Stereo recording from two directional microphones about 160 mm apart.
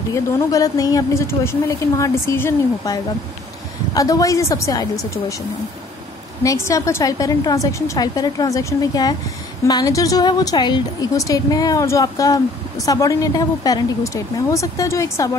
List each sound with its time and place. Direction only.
0.1 s a woman's voice: 20° left (ahead or behind)
6.4 s a woman's voice: 20° left (ahead or behind)